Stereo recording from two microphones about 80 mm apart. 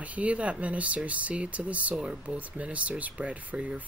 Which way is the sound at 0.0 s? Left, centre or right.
Centre.